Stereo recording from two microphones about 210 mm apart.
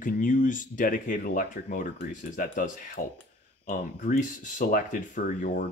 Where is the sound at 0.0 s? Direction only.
40° left (ahead or behind).